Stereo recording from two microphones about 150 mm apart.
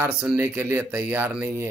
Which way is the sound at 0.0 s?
10° right (ahead or behind).